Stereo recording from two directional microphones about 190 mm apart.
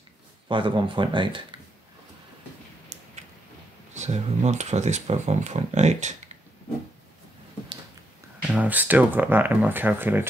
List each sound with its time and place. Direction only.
0.5 s speech: 25° right (ahead or behind)
3.9 s speech: 35° right (ahead or behind)
8.5 s speech: 10° right (ahead or behind)